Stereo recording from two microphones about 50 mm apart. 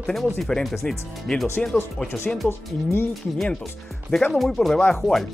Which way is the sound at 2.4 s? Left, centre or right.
Left.